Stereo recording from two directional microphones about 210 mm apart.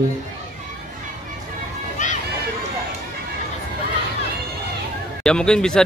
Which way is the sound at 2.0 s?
35° left (ahead or behind).